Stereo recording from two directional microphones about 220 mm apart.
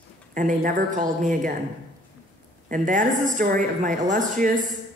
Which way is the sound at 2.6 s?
35° right (ahead or behind).